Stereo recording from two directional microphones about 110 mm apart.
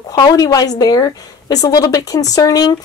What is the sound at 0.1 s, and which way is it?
Speech, 35° left (ahead or behind).